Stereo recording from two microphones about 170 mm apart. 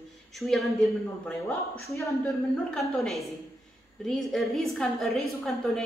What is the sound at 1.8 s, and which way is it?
Speech, 15° left (ahead or behind).